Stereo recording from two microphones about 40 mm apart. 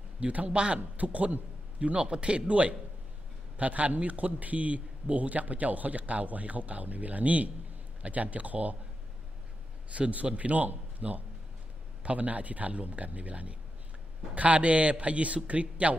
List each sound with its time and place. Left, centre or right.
0.2 s a man's voice: right
9.8 s speech: right